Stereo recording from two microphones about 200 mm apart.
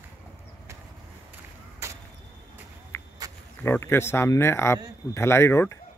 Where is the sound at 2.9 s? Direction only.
10° left (ahead or behind).